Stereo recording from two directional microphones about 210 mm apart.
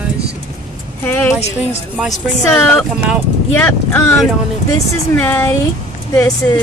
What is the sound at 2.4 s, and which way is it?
Speech, 10° left (ahead or behind).